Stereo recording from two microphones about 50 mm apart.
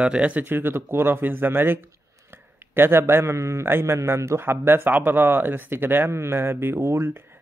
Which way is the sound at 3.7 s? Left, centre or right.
Right.